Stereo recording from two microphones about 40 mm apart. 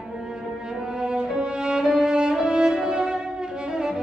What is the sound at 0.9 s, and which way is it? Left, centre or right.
Music, right.